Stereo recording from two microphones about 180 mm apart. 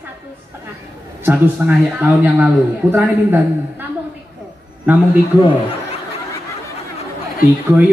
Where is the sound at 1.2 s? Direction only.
10° right (ahead or behind).